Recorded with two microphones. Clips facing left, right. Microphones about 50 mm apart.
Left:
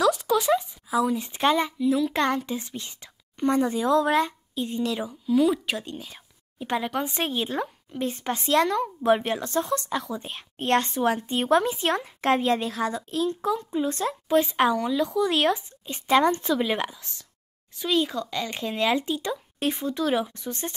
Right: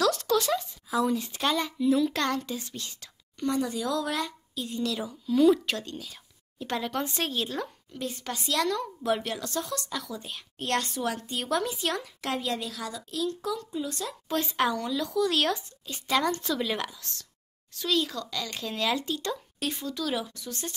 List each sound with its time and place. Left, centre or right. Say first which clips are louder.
0.0 s a sound: left 3 dB; centre
1.1 s speech: left 5 dB; left
1.8 s a child's voice: left 1 dB; centre
2.1 s a child's voice: left 4 dB; left
3.4 s speech: left 6 dB; left
5.2 s a woman's voice: right 1 dB; centre
5.8 s speech: left 2 dB; left
14.3 s speech: left 6 dB; centre